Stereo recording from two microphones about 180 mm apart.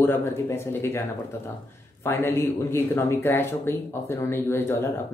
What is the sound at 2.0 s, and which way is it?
Speech, 15° left (ahead or behind).